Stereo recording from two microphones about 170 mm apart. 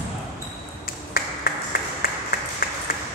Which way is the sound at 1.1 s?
60° left (ahead or behind).